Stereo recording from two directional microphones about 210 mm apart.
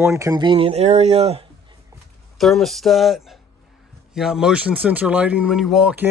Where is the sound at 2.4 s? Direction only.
Centre (ahead or behind).